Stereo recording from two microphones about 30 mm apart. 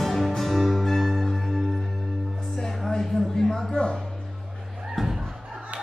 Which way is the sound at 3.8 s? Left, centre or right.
Left.